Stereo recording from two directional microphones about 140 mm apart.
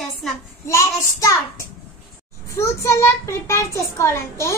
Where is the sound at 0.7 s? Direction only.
20° left (ahead or behind).